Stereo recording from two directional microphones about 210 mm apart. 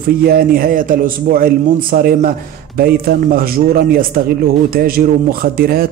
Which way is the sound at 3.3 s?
45° right (ahead or behind).